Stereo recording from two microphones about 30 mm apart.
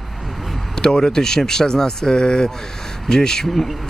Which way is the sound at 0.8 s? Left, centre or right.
Left.